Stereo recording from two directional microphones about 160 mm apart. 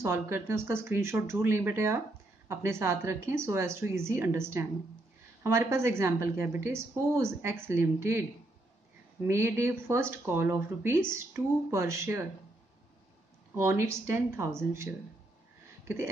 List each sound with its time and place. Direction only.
0.0 s a woman's voice: 15° right (ahead or behind)
9.3 s a woman's voice: 15° right (ahead or behind)
13.6 s a woman's voice: 15° right (ahead or behind)